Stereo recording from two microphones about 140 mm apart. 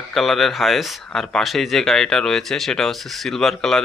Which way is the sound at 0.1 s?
Centre (ahead or behind).